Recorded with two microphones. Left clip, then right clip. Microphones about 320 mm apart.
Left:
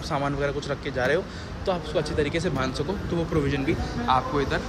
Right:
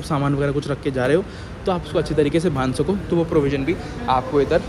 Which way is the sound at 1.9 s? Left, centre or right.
Centre.